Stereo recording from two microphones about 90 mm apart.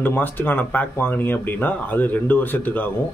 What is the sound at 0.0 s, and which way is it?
Speech, 20° left (ahead or behind).